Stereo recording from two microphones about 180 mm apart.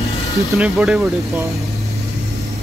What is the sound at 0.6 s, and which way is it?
Speech, 5° right (ahead or behind).